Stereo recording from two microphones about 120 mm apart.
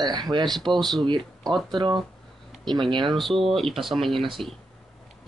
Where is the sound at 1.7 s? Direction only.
35° right (ahead or behind).